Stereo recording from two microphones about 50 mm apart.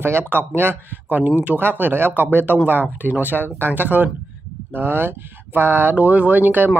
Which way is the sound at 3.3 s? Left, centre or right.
Left.